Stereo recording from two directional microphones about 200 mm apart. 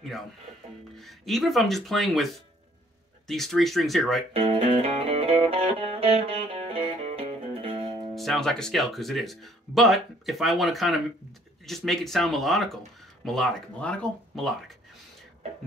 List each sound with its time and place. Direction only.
0.9 s speech: centre (ahead or behind)
3.3 s speech: centre (ahead or behind)
4.3 s music: 30° right (ahead or behind)
8.1 s speech: centre (ahead or behind)